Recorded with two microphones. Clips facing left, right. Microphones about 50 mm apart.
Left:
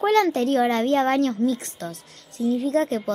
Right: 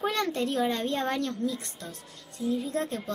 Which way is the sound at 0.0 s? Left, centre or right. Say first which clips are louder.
Left 9 dB; left.